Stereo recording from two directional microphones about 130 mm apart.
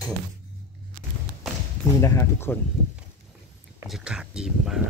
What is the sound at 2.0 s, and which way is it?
Speech, 20° left (ahead or behind).